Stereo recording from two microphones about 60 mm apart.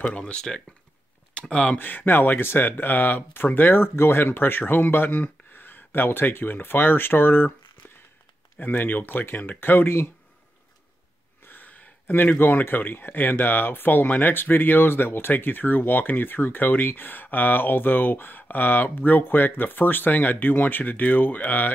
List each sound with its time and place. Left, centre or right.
0.0 s speech: centre
1.8 s speech: left
8.5 s speech: left
11.4 s speech: left